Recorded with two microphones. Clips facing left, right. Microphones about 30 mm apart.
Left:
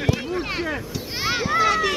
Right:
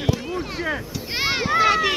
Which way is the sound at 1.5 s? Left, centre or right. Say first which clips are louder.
Right 2 dB; centre.